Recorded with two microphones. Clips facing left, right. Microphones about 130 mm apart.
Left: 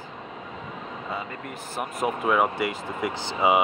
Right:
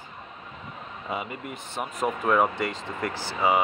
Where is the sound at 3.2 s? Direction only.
15° left (ahead or behind).